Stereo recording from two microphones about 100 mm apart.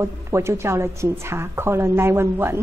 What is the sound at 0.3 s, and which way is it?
A woman's voice, 25° right (ahead or behind).